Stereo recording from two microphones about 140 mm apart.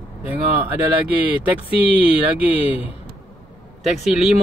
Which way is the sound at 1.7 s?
40° left (ahead or behind).